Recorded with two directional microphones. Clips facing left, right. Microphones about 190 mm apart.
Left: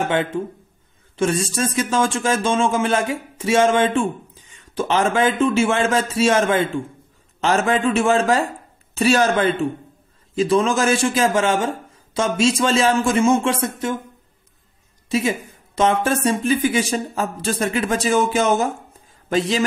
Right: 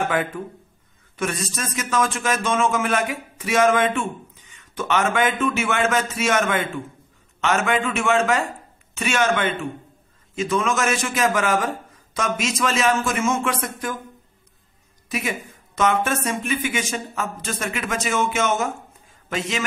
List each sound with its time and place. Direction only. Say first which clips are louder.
0.0 s speech: left 3 dB; 25° left (ahead or behind)
15.0 s speech: left 6 dB; 30° left (ahead or behind)